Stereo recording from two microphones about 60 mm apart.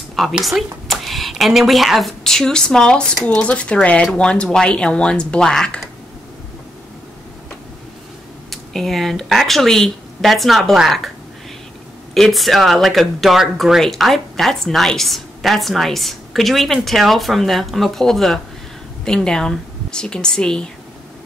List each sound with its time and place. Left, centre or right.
0.4 s speech: centre
8.5 s a woman's voice: centre
12.1 s a woman's voice: centre